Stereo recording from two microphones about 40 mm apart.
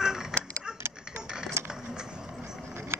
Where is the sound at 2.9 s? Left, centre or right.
Right.